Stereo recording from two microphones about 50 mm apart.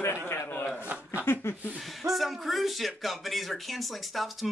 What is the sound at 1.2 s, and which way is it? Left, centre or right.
Speech, left.